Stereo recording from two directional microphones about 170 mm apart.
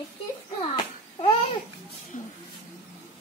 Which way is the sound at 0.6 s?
30° left (ahead or behind).